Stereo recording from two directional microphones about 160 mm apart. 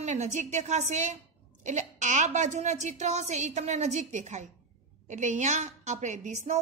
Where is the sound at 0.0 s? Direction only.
45° right (ahead or behind).